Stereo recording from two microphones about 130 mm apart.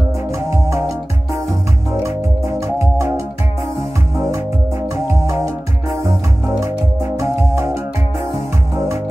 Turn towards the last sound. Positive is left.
turn(degrees=-20)  # may be behind; listen again after turning